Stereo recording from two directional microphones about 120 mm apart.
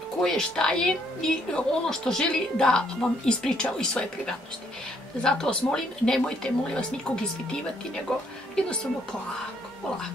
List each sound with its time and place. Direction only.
0.2 s a woman's voice: 5° left (ahead or behind)
8.1 s a woman's voice: 5° left (ahead or behind)